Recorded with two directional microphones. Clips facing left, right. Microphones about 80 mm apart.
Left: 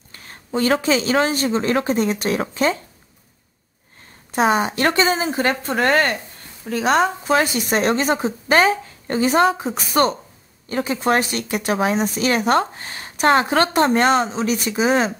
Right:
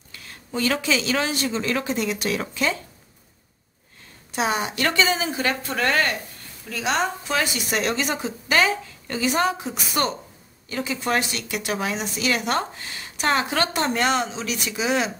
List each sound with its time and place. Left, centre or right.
0.1 s speech: left
4.3 s speech: left